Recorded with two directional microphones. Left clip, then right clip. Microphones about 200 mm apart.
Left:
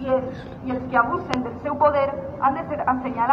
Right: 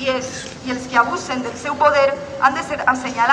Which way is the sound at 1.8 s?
15° right (ahead or behind).